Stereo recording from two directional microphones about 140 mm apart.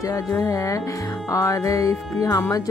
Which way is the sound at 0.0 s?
25° left (ahead or behind).